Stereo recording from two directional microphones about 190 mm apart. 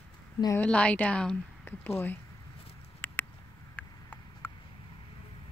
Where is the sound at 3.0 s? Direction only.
10° left (ahead or behind).